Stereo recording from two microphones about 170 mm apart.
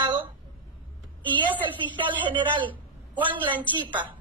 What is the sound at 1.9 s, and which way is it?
A woman's voice, 30° right (ahead or behind).